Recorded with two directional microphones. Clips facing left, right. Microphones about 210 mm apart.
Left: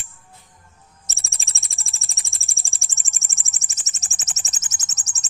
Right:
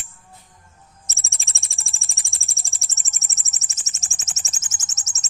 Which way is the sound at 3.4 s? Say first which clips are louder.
Even; 30° left (ahead or behind).